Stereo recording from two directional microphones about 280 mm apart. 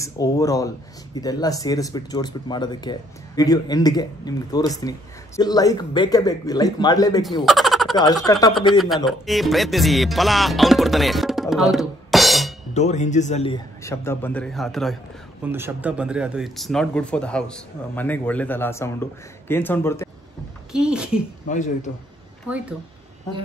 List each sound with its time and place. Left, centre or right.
0.0 s speech: centre
7.4 s a sound: centre
8.3 s speech: centre
8.7 s speech: centre
12.7 s speech: left; by 20.1 s centre
20.7 s speech: centre
21.5 s speech: left